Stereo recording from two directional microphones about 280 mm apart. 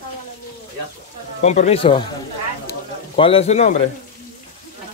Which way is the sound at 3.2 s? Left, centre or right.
Centre.